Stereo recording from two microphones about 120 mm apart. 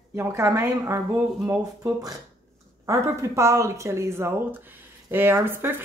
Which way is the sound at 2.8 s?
25° right (ahead or behind).